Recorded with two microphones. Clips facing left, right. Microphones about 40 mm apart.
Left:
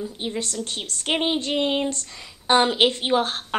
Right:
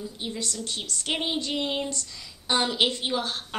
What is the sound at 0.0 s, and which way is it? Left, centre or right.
A woman's voice, left.